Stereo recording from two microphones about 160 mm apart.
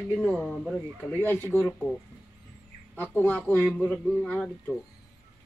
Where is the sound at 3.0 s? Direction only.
10° left (ahead or behind).